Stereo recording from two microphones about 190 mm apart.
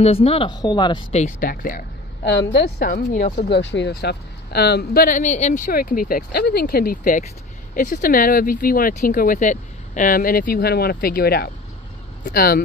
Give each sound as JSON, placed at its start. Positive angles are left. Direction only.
{"t": 0.0, "sound": "speech", "side_deg": 30}
{"t": 1.1, "sound": "speech", "side_deg": 40}
{"t": 2.2, "sound": "speech", "side_deg": 65}